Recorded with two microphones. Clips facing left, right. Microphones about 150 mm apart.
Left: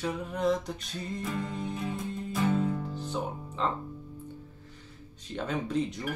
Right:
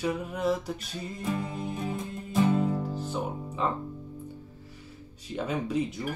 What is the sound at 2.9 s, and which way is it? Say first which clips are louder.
Music: right 2 dB; 5° right (ahead or behind).